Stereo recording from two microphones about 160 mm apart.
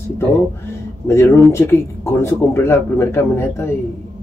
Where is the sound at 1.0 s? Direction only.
15° left (ahead or behind).